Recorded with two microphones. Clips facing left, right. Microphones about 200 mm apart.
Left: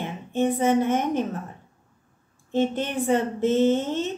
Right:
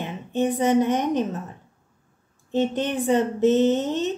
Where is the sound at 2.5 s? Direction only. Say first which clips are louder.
Right 1 dB; 20° right (ahead or behind).